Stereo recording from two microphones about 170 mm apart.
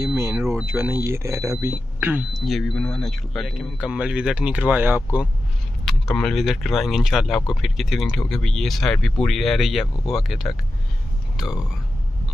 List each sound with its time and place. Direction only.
0.0 s speech: 15° right (ahead or behind)
5.9 s speech: 5° left (ahead or behind)